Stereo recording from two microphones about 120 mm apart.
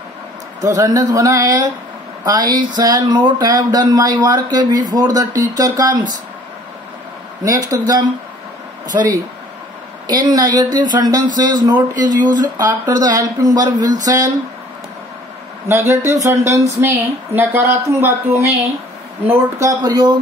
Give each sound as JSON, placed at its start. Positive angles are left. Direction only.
{"t": 0.6, "sound": "a woman's voice", "side_deg": -30}
{"t": 7.4, "sound": "a woman's voice", "side_deg": -30}
{"t": 15.7, "sound": "a woman's voice", "side_deg": -20}